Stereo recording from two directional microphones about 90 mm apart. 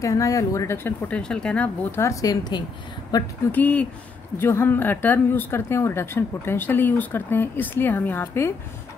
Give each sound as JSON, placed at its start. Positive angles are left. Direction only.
{"t": 0.0, "sound": "speech", "side_deg": 35}
{"t": 0.8, "sound": "speech", "side_deg": 15}
{"t": 1.9, "sound": "speech", "side_deg": 30}
{"t": 2.2, "sound": "speech", "side_deg": 50}
{"t": 3.5, "sound": "speech", "side_deg": 15}